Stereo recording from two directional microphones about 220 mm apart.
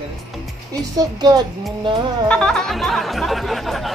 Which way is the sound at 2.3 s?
5° left (ahead or behind).